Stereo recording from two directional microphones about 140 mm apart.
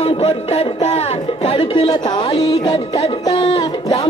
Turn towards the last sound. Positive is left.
turn(degrees=40)  # may be behind; listen again after turning